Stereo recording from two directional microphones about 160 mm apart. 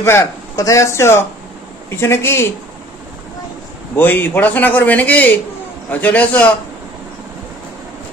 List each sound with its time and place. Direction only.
0.0 s a man's voice: 15° left (ahead or behind)
3.9 s a man's voice: 15° left (ahead or behind)